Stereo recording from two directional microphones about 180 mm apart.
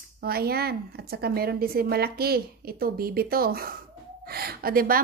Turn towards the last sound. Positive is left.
turn(degrees=-55)  # may be behind; listen again after turning